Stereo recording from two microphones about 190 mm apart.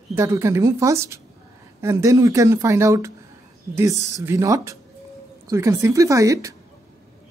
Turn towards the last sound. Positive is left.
turn(degrees=-15)  # may be behind; listen again after turning